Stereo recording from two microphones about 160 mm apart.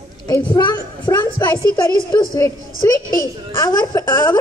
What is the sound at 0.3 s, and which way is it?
A woman's voice, 30° left (ahead or behind).